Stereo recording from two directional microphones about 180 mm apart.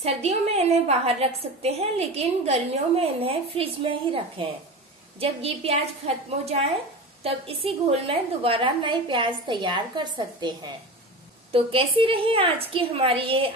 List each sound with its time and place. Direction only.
0.0 s a woman's voice: 35° right (ahead or behind)